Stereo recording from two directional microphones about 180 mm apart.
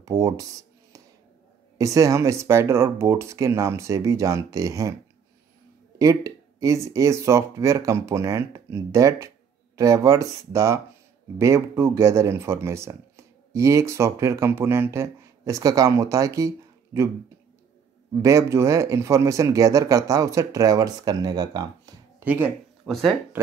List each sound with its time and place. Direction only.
0.0 s speech: 20° right (ahead or behind)
1.8 s speech: 20° right (ahead or behind)
5.9 s speech: 20° right (ahead or behind)
18.2 s speech: 15° right (ahead or behind)
22.2 s speech: 10° right (ahead or behind)